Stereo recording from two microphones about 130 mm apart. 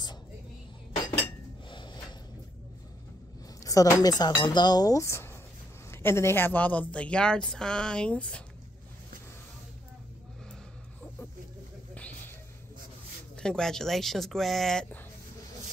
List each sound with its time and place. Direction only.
1.7 s snort: 35° left (ahead or behind)
3.6 s speech: 25° left (ahead or behind); by 8.5 s 10° left (ahead or behind)
11.9 s a sound: 10° left (ahead or behind)
13.4 s speech: 5° left (ahead or behind)